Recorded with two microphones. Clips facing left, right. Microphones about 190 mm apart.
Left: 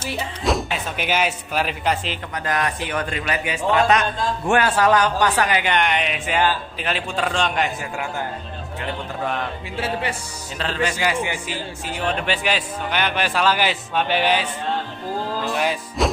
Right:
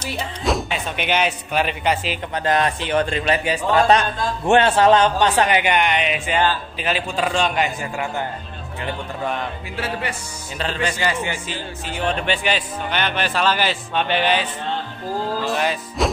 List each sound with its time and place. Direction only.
0.0 s speech: centre (ahead or behind)
2.3 s a man's voice: 25° right (ahead or behind)
5.8 s speech: centre (ahead or behind)
10.6 s a man's voice: 5° left (ahead or behind)
15.5 s a man's voice: 10° left (ahead or behind)